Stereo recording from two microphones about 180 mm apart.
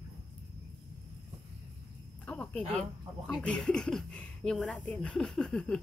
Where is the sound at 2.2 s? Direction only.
10° left (ahead or behind).